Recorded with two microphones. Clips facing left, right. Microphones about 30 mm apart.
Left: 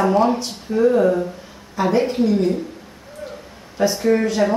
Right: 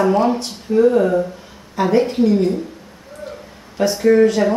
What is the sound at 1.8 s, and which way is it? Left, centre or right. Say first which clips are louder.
Speech: right 1 dB; right.